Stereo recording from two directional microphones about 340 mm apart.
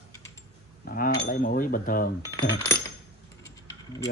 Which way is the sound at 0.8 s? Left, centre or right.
Left.